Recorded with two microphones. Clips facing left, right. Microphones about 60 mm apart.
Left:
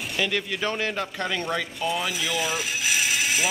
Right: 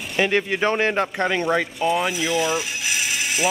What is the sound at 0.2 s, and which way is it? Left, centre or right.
Speech, right.